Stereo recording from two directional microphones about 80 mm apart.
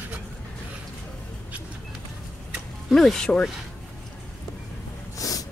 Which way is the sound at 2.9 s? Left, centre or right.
Centre.